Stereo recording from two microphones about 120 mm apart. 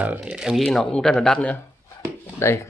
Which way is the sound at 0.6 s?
5° left (ahead or behind).